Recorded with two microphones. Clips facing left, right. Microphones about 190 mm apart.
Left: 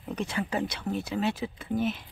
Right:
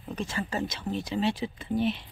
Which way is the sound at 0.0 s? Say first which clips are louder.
Left 2 dB; 15° left (ahead or behind).